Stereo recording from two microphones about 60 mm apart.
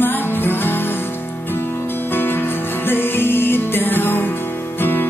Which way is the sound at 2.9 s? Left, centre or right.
Left.